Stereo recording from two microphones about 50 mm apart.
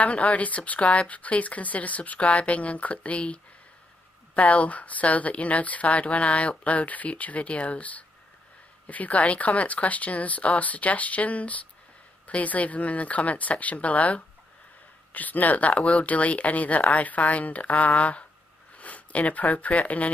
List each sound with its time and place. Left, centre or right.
0.0 s speech: left
4.4 s speech: left